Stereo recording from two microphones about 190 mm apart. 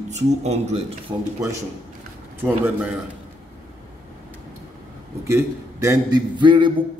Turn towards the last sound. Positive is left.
turn(degrees=-25)  # may be behind; listen again after turning